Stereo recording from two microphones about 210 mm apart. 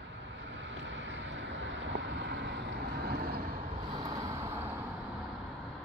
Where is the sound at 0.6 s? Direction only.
60° right (ahead or behind).